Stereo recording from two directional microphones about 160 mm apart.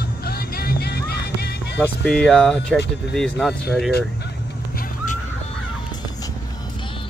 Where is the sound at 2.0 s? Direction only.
5° left (ahead or behind).